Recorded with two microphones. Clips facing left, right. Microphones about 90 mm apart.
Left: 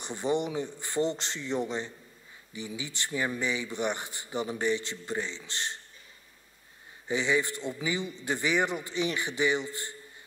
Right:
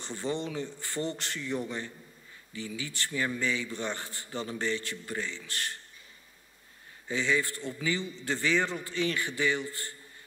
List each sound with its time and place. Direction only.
0.0 s a man's voice: 20° left (ahead or behind)
7.1 s a man's voice: 20° left (ahead or behind)